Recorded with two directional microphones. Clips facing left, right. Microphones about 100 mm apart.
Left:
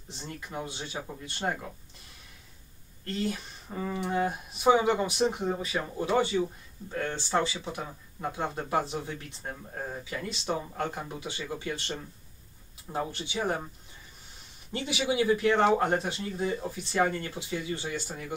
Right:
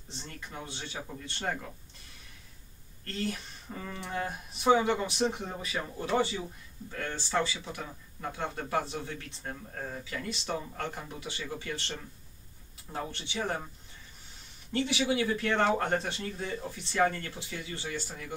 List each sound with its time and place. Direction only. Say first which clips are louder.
0.1 s speech: left 5 dB; 10° left (ahead or behind)
3.1 s speech: left 3 dB; 20° left (ahead or behind)
14.7 s speech: right 1 dB; 15° left (ahead or behind)